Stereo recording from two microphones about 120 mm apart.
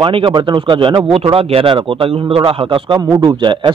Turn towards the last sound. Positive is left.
turn(degrees=-40)  # may be behind; listen again after turning